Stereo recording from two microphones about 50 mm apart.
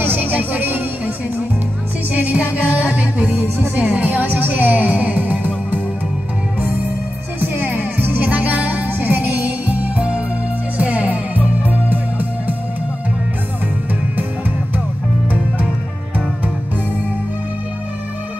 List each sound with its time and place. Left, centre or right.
0.0 s music: right
2.1 s music: right
7.3 s music: right